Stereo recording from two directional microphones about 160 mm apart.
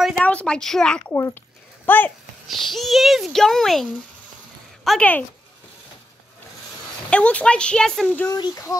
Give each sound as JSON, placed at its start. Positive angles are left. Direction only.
{"t": 0.2, "sound": "a woman's voice", "side_deg": 5}
{"t": 2.4, "sound": "a child's voice", "side_deg": 0}
{"t": 7.1, "sound": "a child's voice", "side_deg": 5}
{"t": 8.3, "sound": "a child's voice", "side_deg": 25}